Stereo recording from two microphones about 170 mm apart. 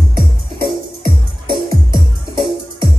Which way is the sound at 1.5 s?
30° right (ahead or behind).